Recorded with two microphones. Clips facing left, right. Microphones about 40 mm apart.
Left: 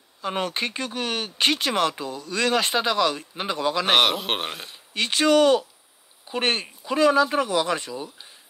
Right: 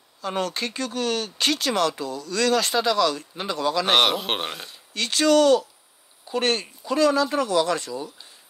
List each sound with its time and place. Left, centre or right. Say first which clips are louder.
0.2 s speech: even; left
3.8 s a man's voice: even; centre
4.6 s speech: left 2 dB; left